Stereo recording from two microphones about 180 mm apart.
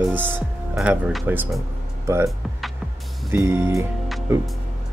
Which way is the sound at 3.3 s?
15° right (ahead or behind).